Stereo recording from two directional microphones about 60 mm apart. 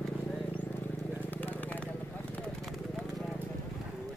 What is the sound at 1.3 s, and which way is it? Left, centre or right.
Vehicle, left.